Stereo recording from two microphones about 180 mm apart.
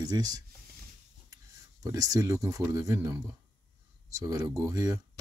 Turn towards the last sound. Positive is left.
turn(degrees=-20)  # may be behind; listen again after turning